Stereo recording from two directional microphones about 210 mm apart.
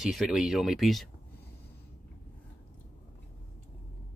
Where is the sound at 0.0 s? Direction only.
Centre (ahead or behind).